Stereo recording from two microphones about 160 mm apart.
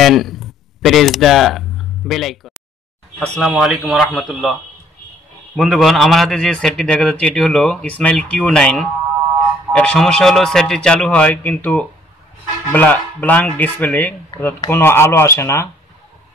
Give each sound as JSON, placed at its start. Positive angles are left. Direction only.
{"t": 0.0, "sound": "a man's voice", "side_deg": 0}
{"t": 5.6, "sound": "a man's voice", "side_deg": 0}